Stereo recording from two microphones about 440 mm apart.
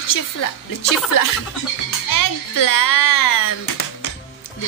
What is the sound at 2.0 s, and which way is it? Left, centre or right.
A child's voice, left.